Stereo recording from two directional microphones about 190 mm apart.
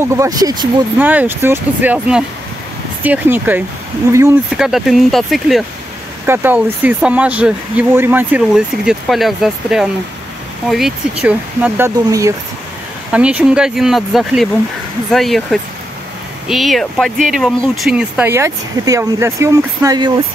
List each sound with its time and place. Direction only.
0.0 s speech: 15° right (ahead or behind)
0.9 s speech: 10° right (ahead or behind)
4.5 s speech: centre (ahead or behind)
6.2 s speech: 10° right (ahead or behind)